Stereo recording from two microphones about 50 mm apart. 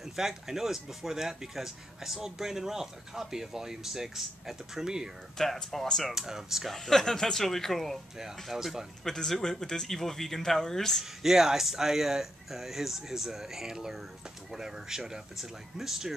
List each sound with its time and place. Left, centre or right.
0.0 s speech: centre
5.4 s speech: centre
6.1 s speech: centre
6.7 s speech: centre
9.0 s speech: centre
11.2 s speech: centre